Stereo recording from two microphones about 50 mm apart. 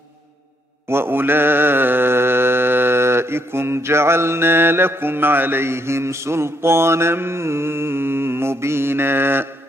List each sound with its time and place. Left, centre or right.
0.8 s mantra: right